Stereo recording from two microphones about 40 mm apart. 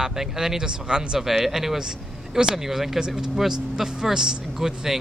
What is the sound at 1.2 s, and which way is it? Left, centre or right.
Speech, centre.